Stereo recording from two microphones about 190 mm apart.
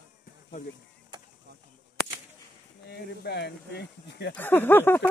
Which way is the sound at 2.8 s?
60° left (ahead or behind).